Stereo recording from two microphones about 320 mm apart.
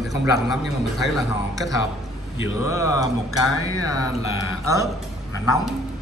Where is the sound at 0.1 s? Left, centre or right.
Centre.